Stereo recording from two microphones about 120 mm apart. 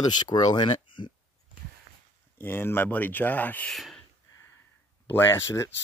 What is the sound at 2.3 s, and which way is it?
Speech, 20° left (ahead or behind).